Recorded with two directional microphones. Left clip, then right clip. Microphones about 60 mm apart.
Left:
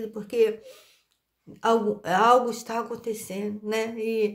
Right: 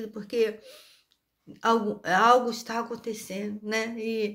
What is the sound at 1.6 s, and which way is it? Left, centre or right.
Speech, left.